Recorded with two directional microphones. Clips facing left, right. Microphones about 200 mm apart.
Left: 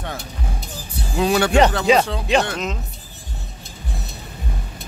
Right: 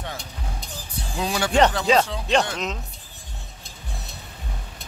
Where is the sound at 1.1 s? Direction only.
65° left (ahead or behind).